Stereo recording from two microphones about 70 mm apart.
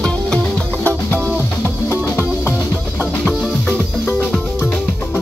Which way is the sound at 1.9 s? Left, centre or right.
Left.